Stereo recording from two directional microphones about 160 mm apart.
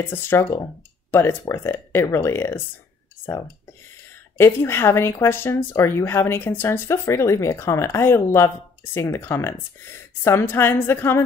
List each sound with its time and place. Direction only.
0.0 s speech: 15° left (ahead or behind)
4.4 s speech: 15° left (ahead or behind)